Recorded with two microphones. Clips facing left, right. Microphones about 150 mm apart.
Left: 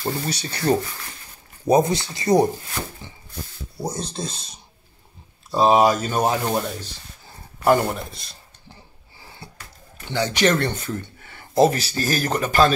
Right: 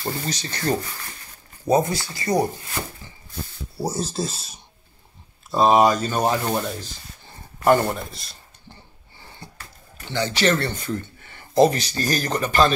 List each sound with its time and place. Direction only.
0.0 s speech: 10° left (ahead or behind)
3.7 s speech: 5° right (ahead or behind)
10.0 s speech: 15° left (ahead or behind)
11.5 s speech: 5° left (ahead or behind)